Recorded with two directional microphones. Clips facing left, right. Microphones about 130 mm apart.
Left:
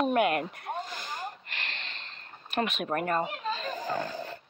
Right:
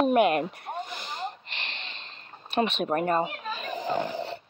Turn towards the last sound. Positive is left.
turn(degrees=-20)  # may be behind; listen again after turning